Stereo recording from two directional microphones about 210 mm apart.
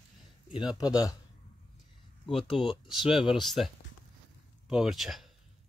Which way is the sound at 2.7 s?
Centre (ahead or behind).